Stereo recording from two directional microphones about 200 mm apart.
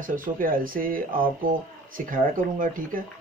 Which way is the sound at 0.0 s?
45° right (ahead or behind).